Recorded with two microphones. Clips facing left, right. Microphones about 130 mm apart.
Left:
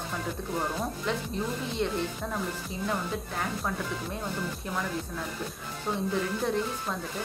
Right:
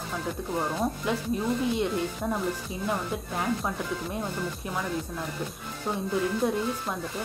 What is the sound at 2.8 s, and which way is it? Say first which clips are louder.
Speech: right 1 dB; 10° right (ahead or behind).